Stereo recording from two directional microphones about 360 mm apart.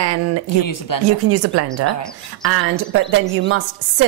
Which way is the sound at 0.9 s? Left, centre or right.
Left.